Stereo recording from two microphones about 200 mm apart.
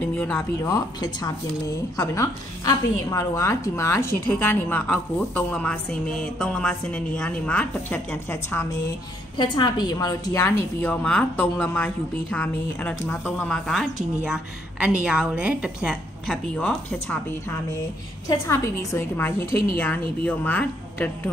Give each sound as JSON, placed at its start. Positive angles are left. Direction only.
{"t": 0.1, "sound": "speech", "side_deg": 5}
{"t": 0.6, "sound": "a woman's voice", "side_deg": 15}
{"t": 9.4, "sound": "a woman's voice", "side_deg": 20}
{"t": 16.5, "sound": "a woman's voice", "side_deg": 5}